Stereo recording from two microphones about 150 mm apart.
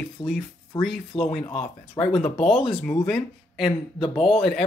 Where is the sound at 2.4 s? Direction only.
5° left (ahead or behind).